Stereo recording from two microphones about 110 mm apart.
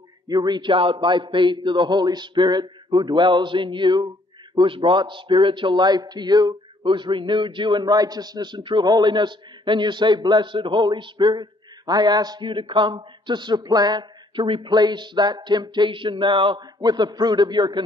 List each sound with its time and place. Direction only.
0.3 s a man's voice: 40° right (ahead or behind)